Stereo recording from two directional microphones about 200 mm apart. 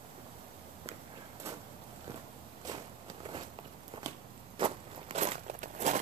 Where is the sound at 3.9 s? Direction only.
25° right (ahead or behind).